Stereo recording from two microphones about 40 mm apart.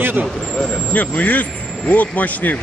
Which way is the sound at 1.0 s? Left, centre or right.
Left.